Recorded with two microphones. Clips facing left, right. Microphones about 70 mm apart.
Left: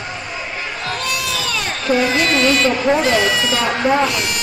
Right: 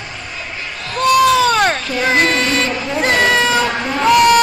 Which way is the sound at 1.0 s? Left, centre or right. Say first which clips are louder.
Right 17 dB; right.